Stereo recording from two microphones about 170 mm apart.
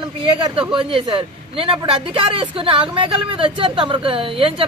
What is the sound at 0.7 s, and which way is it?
Speech, 30° right (ahead or behind).